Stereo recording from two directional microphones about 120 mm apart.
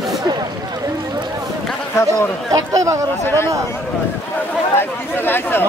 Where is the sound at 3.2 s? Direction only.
20° left (ahead or behind).